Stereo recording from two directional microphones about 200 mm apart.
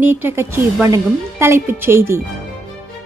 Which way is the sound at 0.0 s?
10° right (ahead or behind).